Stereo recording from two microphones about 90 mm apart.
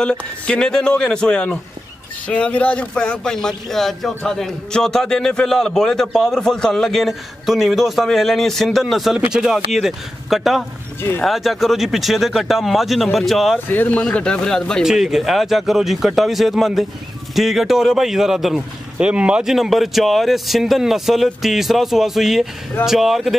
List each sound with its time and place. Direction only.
0.0 s a man's voice: 10° left (ahead or behind)
13.7 s a man's voice: 20° left (ahead or behind)
14.8 s speech: 5° right (ahead or behind)